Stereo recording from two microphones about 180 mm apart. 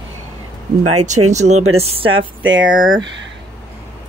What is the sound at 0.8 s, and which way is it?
Speech, 40° right (ahead or behind).